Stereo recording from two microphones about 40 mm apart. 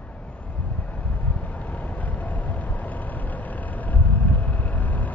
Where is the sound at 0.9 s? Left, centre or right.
Left.